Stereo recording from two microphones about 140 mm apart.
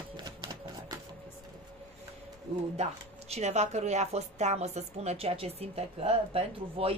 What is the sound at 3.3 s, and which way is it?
A woman's voice, 50° right (ahead or behind).